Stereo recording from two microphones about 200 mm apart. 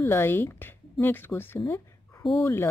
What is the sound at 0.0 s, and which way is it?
Speech, 10° left (ahead or behind).